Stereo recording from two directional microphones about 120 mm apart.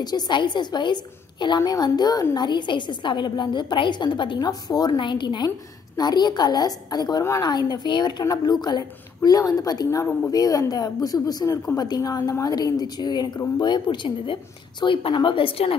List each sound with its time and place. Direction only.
0.0 s a woman's voice: 35° left (ahead or behind)